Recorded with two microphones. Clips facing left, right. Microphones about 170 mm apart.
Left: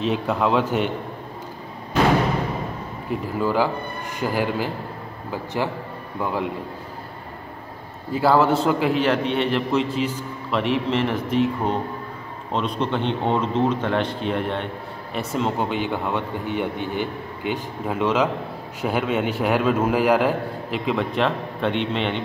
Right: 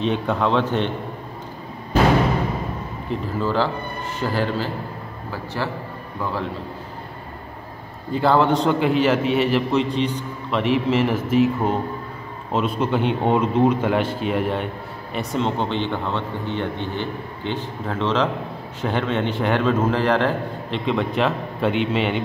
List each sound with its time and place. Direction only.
0.0 s a man's voice: 5° left (ahead or behind)
3.1 s a man's voice: 10° left (ahead or behind)
8.1 s a man's voice: 5° left (ahead or behind)